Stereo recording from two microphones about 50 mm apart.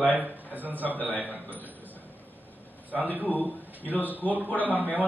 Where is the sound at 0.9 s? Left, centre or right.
Left.